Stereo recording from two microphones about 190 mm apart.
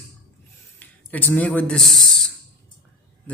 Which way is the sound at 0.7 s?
10° left (ahead or behind).